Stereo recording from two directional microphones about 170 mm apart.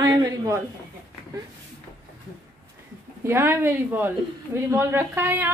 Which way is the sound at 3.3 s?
15° right (ahead or behind).